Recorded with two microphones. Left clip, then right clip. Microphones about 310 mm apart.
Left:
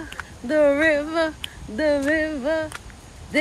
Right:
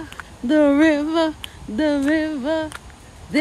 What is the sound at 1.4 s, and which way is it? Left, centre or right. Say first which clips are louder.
Music: right 2 dB; right.